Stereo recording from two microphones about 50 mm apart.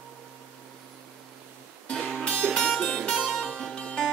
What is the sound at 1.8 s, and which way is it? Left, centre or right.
Music, centre.